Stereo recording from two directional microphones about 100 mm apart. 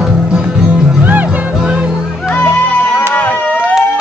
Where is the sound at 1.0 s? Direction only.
15° right (ahead or behind).